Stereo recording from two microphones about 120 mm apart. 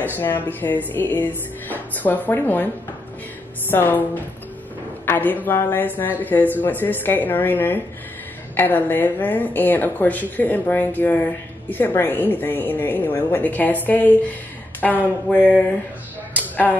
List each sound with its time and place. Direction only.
0.0 s a woman's voice: 15° left (ahead or behind)
3.7 s a woman's voice: 15° left (ahead or behind)
16.3 s a sound: 15° left (ahead or behind)